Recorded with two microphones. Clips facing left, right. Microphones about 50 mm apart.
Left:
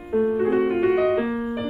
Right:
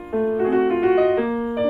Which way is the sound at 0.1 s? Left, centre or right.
Centre.